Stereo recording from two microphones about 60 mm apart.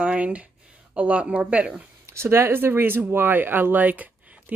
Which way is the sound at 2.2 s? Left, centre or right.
Right.